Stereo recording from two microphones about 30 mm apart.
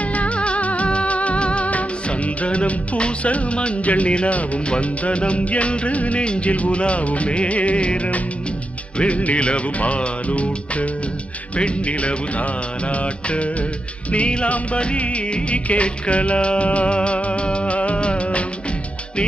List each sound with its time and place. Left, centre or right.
0.0 s music: left
3.8 s music: left
4.1 s music: left
6.2 s music: left
6.5 s music: left